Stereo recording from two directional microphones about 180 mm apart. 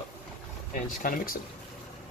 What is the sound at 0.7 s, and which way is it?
Speech, 50° left (ahead or behind).